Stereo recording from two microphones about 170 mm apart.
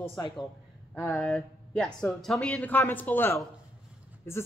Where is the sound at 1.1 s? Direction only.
Centre (ahead or behind).